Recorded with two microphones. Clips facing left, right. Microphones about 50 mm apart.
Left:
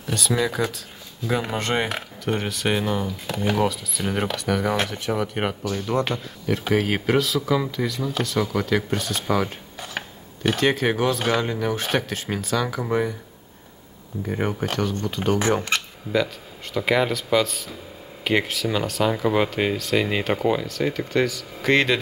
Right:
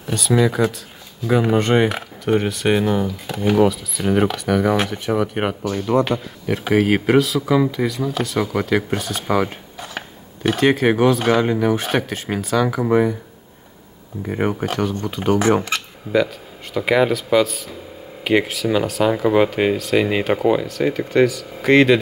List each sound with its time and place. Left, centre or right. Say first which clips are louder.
0.0 s speech: right 6 dB; centre
9.8 s a sound: right 1 dB; centre
10.5 s speech: right 5 dB; right
14.2 s speech: right 4 dB; centre
15.6 s a sound: right 1 dB; centre
16.7 s speech: right 4 dB; centre